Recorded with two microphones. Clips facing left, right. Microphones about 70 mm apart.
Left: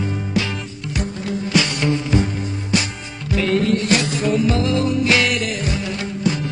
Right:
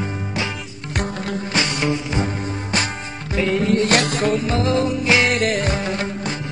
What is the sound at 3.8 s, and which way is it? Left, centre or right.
Music, right.